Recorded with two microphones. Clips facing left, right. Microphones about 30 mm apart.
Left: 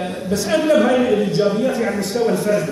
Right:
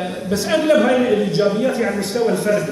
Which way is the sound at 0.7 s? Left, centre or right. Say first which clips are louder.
Even; centre.